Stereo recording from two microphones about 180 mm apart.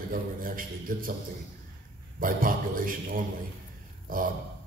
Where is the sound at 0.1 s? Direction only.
50° right (ahead or behind).